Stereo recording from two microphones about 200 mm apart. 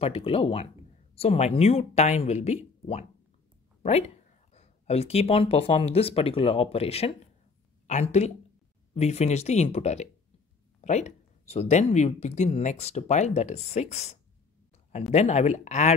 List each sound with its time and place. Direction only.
0.0 s speech: 30° left (ahead or behind)
4.6 s a woman's voice: 30° left (ahead or behind)